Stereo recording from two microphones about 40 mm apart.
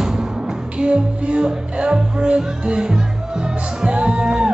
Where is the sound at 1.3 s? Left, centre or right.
Right.